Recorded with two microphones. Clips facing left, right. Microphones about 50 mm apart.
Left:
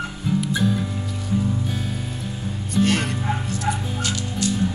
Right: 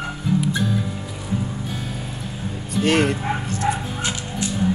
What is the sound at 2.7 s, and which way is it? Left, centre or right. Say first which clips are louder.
Music: right 2 dB; centre.